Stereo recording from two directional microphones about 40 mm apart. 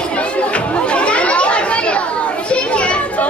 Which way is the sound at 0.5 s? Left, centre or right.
Left.